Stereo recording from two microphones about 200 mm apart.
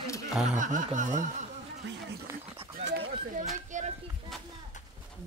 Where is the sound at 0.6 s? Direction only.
40° right (ahead or behind).